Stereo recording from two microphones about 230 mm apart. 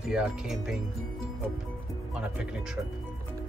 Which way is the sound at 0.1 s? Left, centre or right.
Centre.